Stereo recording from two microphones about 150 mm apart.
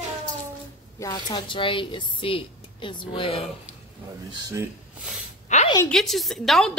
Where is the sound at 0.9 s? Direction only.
25° left (ahead or behind).